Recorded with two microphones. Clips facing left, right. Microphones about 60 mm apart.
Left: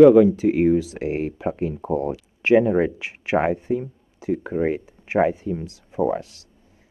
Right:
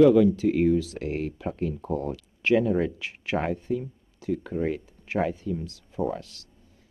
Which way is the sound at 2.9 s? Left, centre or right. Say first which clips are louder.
Left 7 dB; centre.